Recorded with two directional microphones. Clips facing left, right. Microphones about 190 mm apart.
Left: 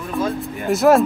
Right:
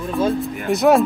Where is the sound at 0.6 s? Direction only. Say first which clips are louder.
Left 1 dB; centre (ahead or behind).